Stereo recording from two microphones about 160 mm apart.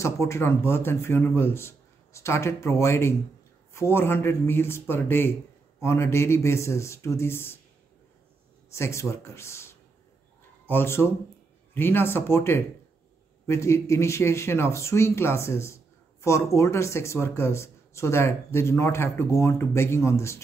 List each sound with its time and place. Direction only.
0.0 s speech: 15° left (ahead or behind)
8.7 s speech: 15° left (ahead or behind)